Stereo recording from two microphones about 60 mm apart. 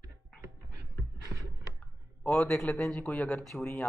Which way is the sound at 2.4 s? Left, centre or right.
Centre.